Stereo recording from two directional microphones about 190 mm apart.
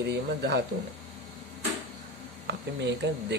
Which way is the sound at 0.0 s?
65° right (ahead or behind).